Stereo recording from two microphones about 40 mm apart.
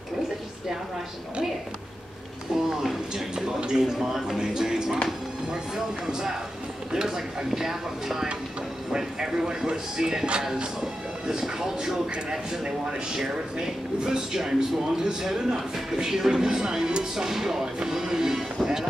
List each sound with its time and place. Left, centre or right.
2.5 s a sound: centre
3.3 s speech: centre
6.0 s speech: centre
7.5 s speech: centre
17.7 s music: centre